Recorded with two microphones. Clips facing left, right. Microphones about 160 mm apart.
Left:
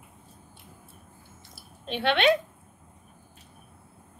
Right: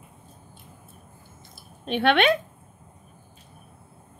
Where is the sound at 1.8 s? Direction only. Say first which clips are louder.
Right 5 dB; 55° right (ahead or behind).